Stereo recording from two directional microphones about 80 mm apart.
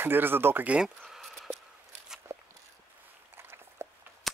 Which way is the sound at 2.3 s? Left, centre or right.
Right.